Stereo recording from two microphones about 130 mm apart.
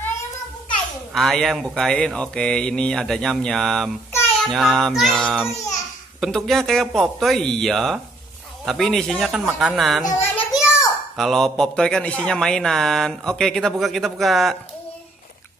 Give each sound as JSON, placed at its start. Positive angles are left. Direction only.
{"t": 1.1, "sound": "a child's voice", "side_deg": 0}
{"t": 5.5, "sound": "a child's voice", "side_deg": 60}
{"t": 6.2, "sound": "a child's voice", "side_deg": 0}
{"t": 10.0, "sound": "a child's voice", "side_deg": 20}
{"t": 10.6, "sound": "a child's voice", "side_deg": 0}